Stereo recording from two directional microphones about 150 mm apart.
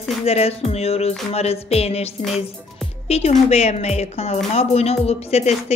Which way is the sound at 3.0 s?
45° left (ahead or behind).